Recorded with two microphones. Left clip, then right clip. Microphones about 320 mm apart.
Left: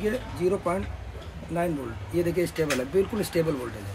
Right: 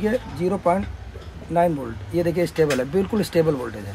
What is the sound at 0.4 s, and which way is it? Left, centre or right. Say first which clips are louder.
Speech: left 1 dB; right.